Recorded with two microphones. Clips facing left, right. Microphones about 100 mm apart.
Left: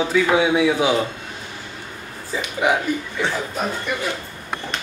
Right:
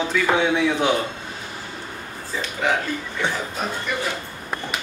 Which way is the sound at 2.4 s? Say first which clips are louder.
Left 3 dB; 10° left (ahead or behind).